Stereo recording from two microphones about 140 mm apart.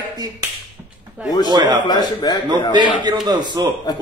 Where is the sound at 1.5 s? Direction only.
30° right (ahead or behind).